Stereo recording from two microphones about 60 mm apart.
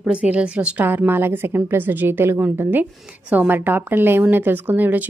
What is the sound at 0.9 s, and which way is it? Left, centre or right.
Speech, right.